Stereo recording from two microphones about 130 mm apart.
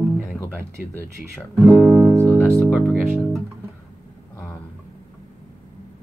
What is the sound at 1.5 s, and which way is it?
Music, 25° right (ahead or behind).